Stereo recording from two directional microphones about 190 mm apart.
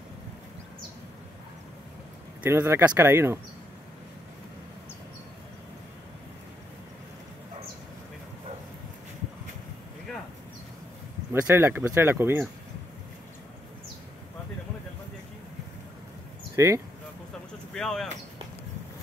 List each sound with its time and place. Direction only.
2.4 s speech: 10° right (ahead or behind)
11.4 s speech: 10° right (ahead or behind)
16.5 s speech: 15° right (ahead or behind)
17.7 s speech: centre (ahead or behind)